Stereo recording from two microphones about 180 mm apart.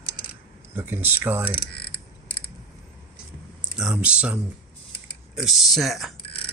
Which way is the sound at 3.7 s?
5° right (ahead or behind).